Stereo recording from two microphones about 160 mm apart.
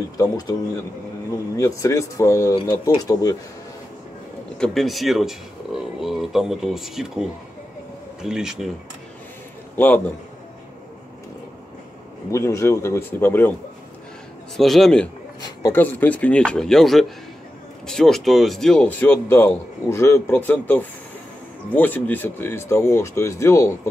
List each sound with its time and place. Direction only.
0.2 s speech: 20° left (ahead or behind)
1.6 s speech: 20° left (ahead or behind)
4.6 s speech: centre (ahead or behind)
9.8 s speech: 10° left (ahead or behind)
12.3 s speech: 20° left (ahead or behind)
14.6 s speech: centre (ahead or behind); by 23.9 s 15° left (ahead or behind)